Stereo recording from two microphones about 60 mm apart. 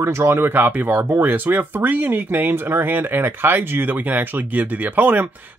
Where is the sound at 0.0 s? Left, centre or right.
Right.